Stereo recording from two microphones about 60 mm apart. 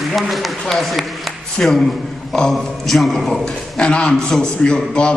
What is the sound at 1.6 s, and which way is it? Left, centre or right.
Speech, centre.